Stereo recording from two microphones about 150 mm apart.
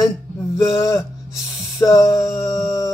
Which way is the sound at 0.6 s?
20° left (ahead or behind).